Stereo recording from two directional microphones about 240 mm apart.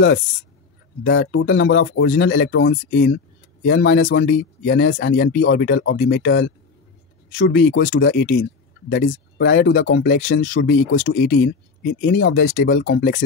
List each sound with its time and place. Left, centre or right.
0.0 s speech: left